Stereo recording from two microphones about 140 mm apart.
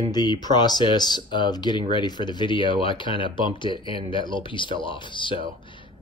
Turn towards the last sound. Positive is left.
turn(degrees=35)  # may be behind; listen again after turning